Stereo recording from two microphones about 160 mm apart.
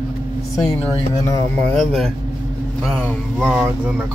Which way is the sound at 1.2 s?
20° left (ahead or behind).